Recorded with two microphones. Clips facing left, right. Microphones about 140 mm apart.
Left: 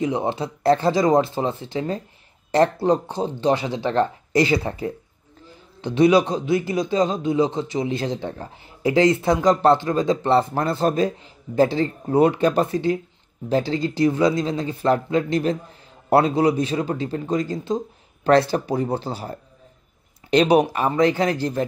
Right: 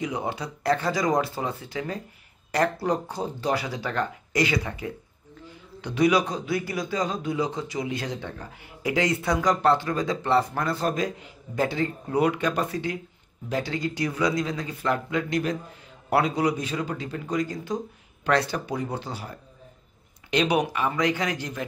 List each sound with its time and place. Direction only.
0.0 s a man's voice: 30° left (ahead or behind)